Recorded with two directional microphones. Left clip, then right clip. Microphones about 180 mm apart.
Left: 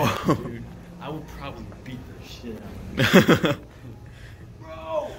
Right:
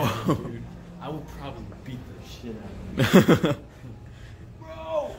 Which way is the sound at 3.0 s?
25° right (ahead or behind).